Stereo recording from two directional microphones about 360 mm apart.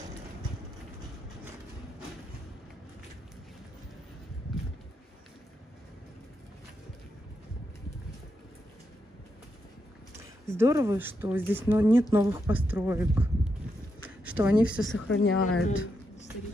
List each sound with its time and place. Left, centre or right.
10.4 s speech: centre
14.0 s a sound: centre
14.9 s speech: left